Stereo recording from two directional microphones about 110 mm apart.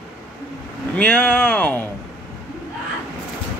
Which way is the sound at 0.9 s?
10° left (ahead or behind).